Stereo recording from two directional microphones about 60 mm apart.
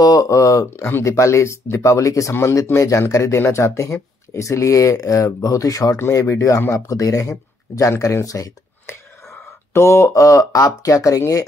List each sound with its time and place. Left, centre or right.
0.0 s speech: left
5.9 s speech: left
6.7 s speech: left
9.8 s speech: left